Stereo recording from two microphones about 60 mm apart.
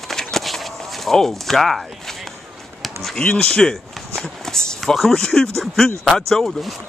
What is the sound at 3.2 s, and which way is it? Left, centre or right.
A man's voice, centre.